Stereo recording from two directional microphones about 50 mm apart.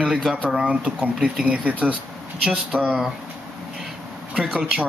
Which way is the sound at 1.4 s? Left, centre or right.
Right.